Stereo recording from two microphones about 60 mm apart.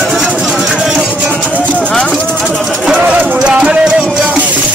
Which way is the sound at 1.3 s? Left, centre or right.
Right.